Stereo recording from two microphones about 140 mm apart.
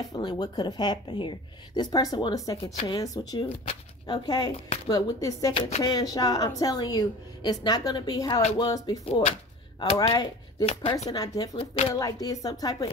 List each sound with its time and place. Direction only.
0.0 s a woman's voice: 30° left (ahead or behind)
2.5 s a woman's voice: 45° left (ahead or behind)
3.0 s a woman's voice: 25° left (ahead or behind)
9.0 s a woman's voice: 50° left (ahead or behind)
9.8 s speech: 30° left (ahead or behind)
11.1 s a woman's voice: 25° left (ahead or behind)
11.5 s speech: 40° left (ahead or behind)
11.9 s a woman's voice: 25° left (ahead or behind)